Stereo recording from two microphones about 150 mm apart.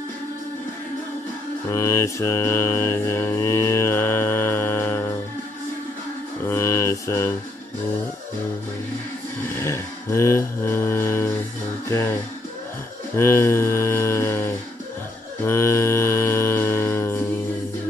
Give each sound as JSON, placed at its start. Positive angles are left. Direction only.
{"t": 1.7, "sound": "mantra", "side_deg": 20}
{"t": 6.5, "sound": "mantra", "side_deg": 20}
{"t": 9.6, "sound": "mantra", "side_deg": 20}
{"t": 13.1, "sound": "a sound", "side_deg": 15}
{"t": 15.4, "sound": "mantra", "side_deg": 15}